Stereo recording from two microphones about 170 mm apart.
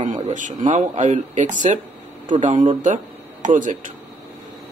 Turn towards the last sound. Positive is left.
turn(degrees=-50)  # may be behind; listen again after turning